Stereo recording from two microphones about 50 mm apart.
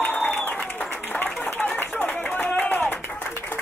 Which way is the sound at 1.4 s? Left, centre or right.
Left.